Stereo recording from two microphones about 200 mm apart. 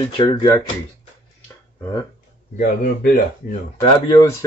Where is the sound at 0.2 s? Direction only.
20° left (ahead or behind).